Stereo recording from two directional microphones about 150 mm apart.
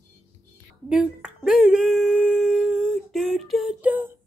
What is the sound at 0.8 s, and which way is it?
Humming, 5° right (ahead or behind).